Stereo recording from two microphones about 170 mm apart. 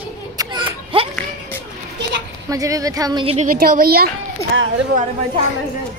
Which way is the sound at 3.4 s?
55° right (ahead or behind).